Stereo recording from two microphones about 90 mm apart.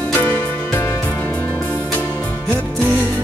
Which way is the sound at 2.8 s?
20° right (ahead or behind).